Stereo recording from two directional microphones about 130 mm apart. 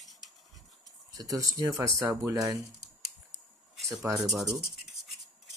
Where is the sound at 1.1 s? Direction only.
25° right (ahead or behind).